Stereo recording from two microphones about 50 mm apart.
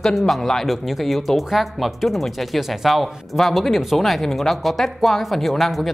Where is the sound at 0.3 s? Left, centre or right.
Centre.